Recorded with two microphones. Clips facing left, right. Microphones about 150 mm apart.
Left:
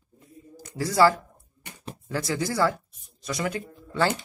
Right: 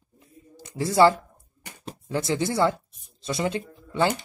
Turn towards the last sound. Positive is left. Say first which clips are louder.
# right 1 dB
turn(degrees=-20)  # may be behind; listen again after turning